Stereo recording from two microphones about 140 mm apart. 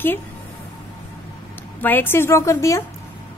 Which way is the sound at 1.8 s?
15° left (ahead or behind).